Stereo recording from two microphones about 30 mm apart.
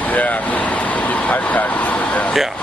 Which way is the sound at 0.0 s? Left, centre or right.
Left.